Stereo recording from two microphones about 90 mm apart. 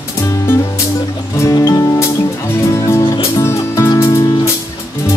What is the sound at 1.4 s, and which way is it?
Music, 35° left (ahead or behind).